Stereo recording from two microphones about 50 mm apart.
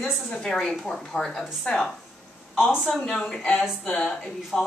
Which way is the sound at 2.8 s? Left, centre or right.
Centre.